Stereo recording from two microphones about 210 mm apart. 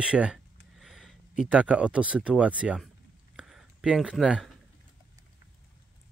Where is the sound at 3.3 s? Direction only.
Centre (ahead or behind).